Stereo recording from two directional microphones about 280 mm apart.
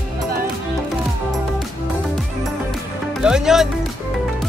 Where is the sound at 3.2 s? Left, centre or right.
Centre.